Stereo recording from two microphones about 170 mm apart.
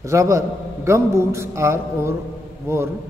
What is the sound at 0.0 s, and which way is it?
A man's voice, 15° right (ahead or behind).